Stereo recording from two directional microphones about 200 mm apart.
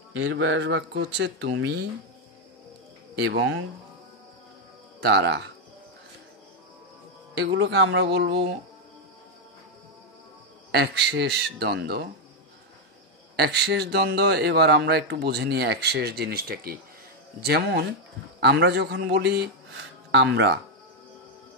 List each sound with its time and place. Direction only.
0.2 s speech: 70° right (ahead or behind)
3.3 s speech: 70° right (ahead or behind)
5.0 s speech: 55° right (ahead or behind)
7.3 s speech: 60° right (ahead or behind)
10.7 s speech: 55° right (ahead or behind)
13.4 s speech: 55° right (ahead or behind)